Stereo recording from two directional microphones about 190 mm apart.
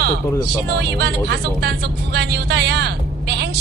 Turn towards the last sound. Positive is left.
turn(degrees=-60)  # may be behind; listen again after turning